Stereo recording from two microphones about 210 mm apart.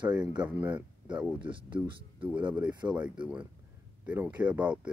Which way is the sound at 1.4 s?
25° right (ahead or behind).